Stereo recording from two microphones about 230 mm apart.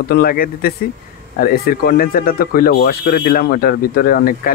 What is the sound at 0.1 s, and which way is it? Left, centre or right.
Speech, left.